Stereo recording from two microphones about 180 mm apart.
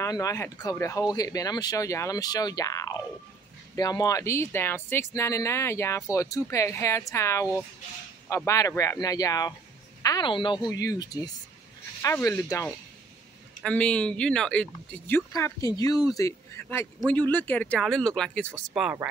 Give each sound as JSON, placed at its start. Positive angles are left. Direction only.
{"t": 0.0, "sound": "speech", "side_deg": 15}
{"t": 13.6, "sound": "speech", "side_deg": 5}
{"t": 18.7, "sound": "speech", "side_deg": -10}